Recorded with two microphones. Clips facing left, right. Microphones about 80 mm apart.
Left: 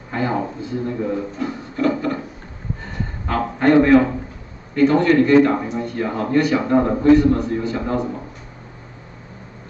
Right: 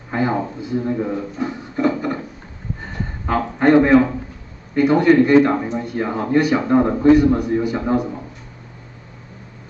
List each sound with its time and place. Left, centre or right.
0.1 s a man's voice: centre
1.4 s a sound: right
3.3 s a man's voice: centre